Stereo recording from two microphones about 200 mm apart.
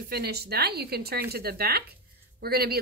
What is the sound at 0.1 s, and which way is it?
A woman's voice, 55° right (ahead or behind).